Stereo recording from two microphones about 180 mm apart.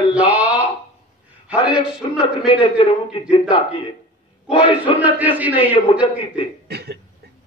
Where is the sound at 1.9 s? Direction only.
5° right (ahead or behind).